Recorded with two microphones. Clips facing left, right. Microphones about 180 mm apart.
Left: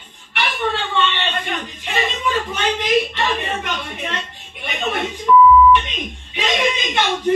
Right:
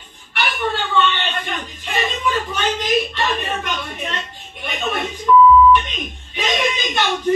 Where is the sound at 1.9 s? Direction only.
20° left (ahead or behind).